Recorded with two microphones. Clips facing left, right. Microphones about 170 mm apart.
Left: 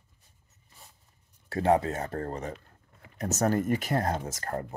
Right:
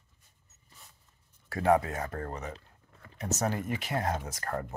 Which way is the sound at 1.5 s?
25° left (ahead or behind).